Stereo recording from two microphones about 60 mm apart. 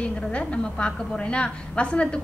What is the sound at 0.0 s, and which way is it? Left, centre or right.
A woman's voice, centre.